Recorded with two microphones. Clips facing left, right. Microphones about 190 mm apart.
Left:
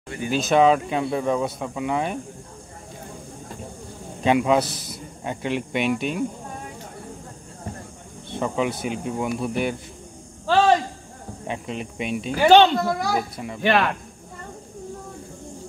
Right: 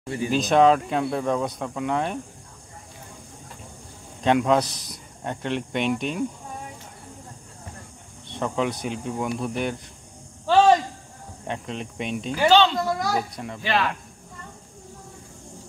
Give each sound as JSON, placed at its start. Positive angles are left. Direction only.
{"t": 0.3, "sound": "a man's voice", "side_deg": 5}
{"t": 4.2, "sound": "a man's voice", "side_deg": 5}
{"t": 8.3, "sound": "a man's voice", "side_deg": 5}
{"t": 11.4, "sound": "a man's voice", "side_deg": 5}
{"t": 12.3, "sound": "speech", "side_deg": 55}
{"t": 12.7, "sound": "speech", "side_deg": 5}
{"t": 13.6, "sound": "speech", "side_deg": 60}